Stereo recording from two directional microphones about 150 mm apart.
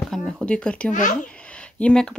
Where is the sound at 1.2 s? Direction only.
5° left (ahead or behind).